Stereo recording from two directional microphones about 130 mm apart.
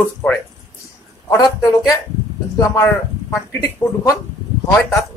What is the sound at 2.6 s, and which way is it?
Speech, 25° left (ahead or behind).